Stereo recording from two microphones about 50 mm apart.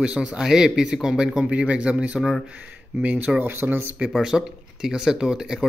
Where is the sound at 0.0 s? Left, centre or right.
Right.